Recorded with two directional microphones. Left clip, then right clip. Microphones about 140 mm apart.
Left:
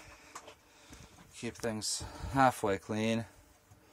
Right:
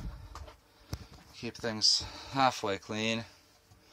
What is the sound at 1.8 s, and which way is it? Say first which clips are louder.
Speech: right 11 dB; 35° left (ahead or behind).